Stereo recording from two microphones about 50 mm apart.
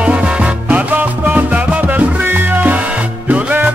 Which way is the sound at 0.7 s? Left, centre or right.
Right.